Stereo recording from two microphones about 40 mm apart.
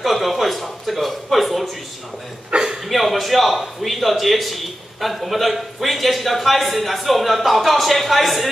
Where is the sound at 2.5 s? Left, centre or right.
Right.